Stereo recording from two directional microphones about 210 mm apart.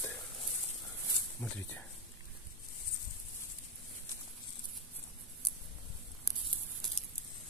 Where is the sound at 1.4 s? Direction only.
10° left (ahead or behind).